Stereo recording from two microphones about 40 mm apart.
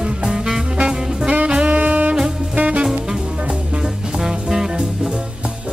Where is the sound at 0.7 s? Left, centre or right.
Right.